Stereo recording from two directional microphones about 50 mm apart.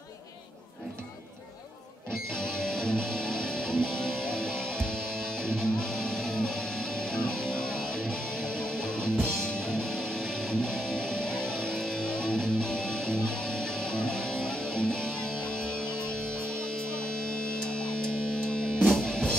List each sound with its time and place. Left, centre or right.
2.3 s music: centre
17.2 s music: centre